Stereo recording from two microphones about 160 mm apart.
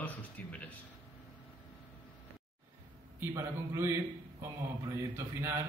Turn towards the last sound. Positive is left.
turn(degrees=-15)  # may be behind; listen again after turning